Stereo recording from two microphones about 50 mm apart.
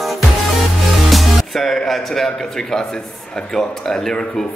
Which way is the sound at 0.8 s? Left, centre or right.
Centre.